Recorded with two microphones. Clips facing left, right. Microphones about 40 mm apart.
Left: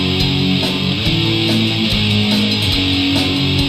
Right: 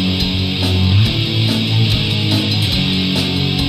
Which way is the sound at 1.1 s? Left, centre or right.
Centre.